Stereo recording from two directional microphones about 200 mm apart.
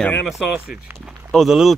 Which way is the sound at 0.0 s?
5° left (ahead or behind).